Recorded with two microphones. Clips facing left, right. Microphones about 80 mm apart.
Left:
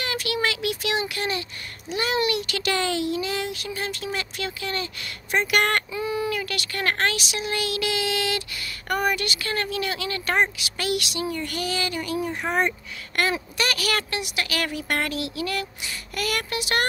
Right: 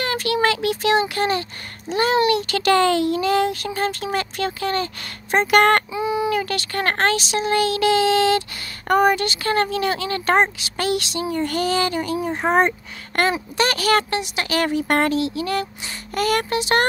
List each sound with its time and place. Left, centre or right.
0.0 s speech: right
5.9 s a sound: centre
6.3 s speech: right